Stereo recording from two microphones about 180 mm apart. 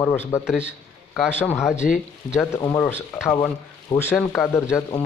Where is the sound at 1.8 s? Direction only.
55° left (ahead or behind).